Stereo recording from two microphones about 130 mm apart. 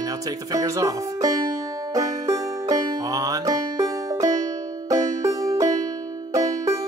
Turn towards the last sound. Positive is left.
turn(degrees=-25)  # may be behind; listen again after turning